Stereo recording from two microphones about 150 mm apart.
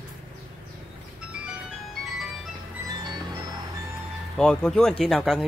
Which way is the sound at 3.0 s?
30° right (ahead or behind).